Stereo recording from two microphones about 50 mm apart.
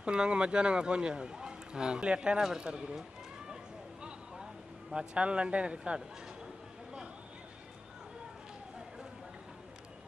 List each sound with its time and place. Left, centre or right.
0.0 s speech: centre
4.9 s speech: right